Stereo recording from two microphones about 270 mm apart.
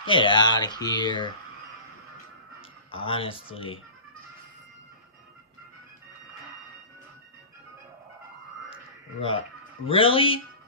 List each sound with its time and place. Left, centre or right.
0.0 s speech: centre
2.9 s speech: centre
9.8 s speech: centre